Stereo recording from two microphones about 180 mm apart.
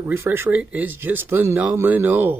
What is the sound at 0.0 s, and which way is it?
Speech, 15° right (ahead or behind).